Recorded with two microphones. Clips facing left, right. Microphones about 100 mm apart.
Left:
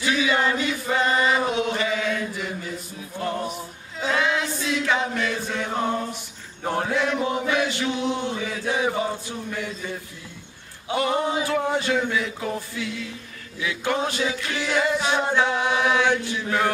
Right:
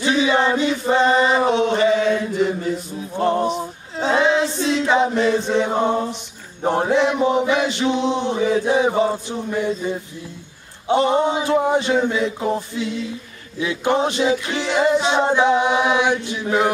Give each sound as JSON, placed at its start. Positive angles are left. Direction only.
{"t": 0.0, "sound": "chant", "side_deg": -25}
{"t": 3.2, "sound": "a capella", "side_deg": -30}
{"t": 6.6, "sound": "chant", "side_deg": -25}
{"t": 10.9, "sound": "a capella", "side_deg": -25}